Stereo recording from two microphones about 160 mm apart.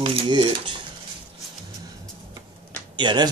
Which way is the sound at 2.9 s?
25° right (ahead or behind).